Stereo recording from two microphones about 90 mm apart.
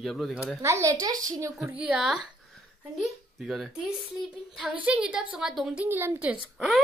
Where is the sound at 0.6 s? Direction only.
35° right (ahead or behind).